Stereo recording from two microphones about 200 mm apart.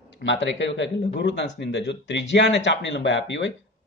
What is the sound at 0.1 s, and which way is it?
A man's voice, 65° left (ahead or behind).